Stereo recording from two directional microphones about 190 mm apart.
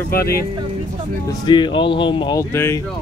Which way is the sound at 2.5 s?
15° left (ahead or behind).